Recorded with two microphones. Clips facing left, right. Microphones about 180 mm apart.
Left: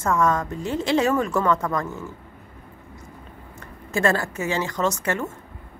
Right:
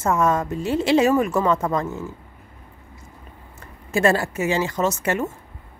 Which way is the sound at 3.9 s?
20° right (ahead or behind).